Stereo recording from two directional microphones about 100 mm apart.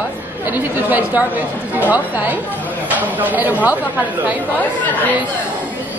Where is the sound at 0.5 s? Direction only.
20° right (ahead or behind).